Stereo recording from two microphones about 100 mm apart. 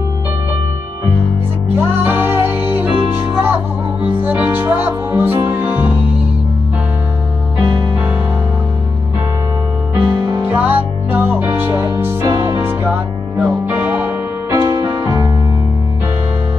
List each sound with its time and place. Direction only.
1.8 s music: 20° right (ahead or behind)
7.6 s music: 50° right (ahead or behind)
9.9 s music: 50° right (ahead or behind)
10.4 s music: 15° right (ahead or behind)
12.3 s music: 40° right (ahead or behind)
13.4 s music: 15° right (ahead or behind)
14.5 s music: 40° right (ahead or behind)